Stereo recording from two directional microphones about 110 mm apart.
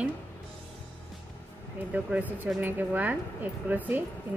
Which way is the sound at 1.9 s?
15° right (ahead or behind).